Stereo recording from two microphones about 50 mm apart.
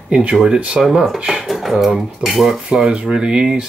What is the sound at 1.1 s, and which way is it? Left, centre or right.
Speech, centre.